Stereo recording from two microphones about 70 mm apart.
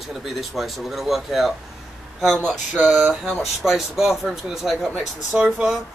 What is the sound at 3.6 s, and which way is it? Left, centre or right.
Speech, centre.